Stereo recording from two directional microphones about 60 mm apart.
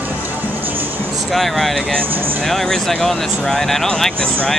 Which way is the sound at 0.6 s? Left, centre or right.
Right.